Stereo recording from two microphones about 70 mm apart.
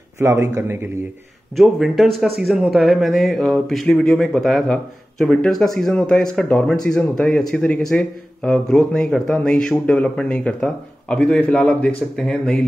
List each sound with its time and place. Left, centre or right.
0.2 s a man's voice: right
1.6 s speech: centre